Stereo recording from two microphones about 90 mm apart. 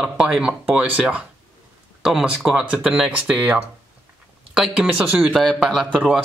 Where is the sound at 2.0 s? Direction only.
5° right (ahead or behind).